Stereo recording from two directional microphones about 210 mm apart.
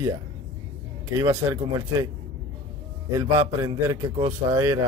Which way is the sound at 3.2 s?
15° right (ahead or behind).